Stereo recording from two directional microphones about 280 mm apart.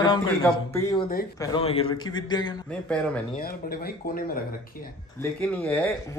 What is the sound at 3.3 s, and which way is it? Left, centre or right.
Speech, left.